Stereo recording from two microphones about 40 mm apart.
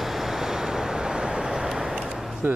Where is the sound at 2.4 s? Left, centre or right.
Right.